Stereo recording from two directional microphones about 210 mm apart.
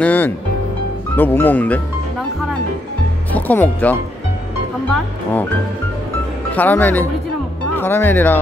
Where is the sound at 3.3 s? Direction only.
10° left (ahead or behind).